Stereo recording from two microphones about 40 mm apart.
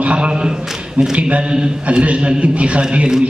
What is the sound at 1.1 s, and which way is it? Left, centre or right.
A man's voice, right.